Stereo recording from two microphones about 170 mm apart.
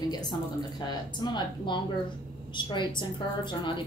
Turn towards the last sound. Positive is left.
turn(degrees=25)  # may be behind; listen again after turning